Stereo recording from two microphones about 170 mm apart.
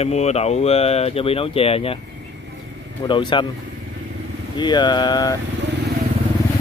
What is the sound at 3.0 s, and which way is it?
Speech, 30° left (ahead or behind).